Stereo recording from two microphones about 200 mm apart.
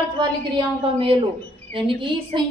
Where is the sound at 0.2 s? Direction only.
25° right (ahead or behind).